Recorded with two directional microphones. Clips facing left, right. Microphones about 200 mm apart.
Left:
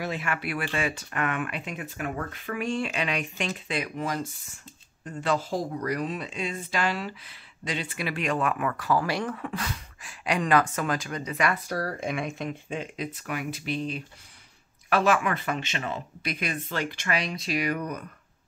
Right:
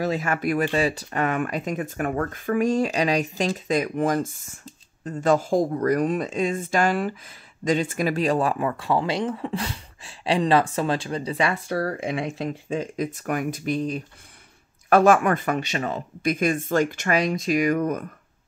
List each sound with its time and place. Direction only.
0.0 s speech: 40° right (ahead or behind)